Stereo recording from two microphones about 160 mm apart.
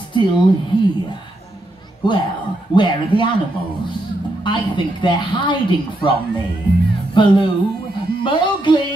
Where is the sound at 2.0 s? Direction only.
30° left (ahead or behind).